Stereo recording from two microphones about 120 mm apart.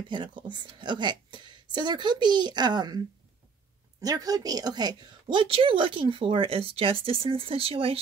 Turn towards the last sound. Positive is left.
turn(degrees=-50)  # may be behind; listen again after turning